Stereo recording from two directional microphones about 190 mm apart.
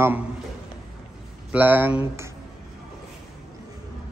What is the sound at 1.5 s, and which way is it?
Speech, 10° right (ahead or behind).